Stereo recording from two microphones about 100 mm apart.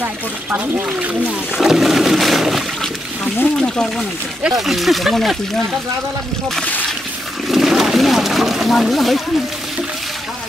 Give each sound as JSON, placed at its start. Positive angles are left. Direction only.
{"t": 0.0, "sound": "speech", "side_deg": -20}
{"t": 1.6, "sound": "a sound", "side_deg": -5}
{"t": 3.5, "sound": "speech", "side_deg": 5}
{"t": 4.4, "sound": "speech", "side_deg": -5}
{"t": 7.4, "sound": "wild animals", "side_deg": 0}